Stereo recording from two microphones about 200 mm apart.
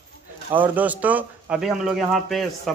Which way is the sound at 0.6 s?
10° right (ahead or behind).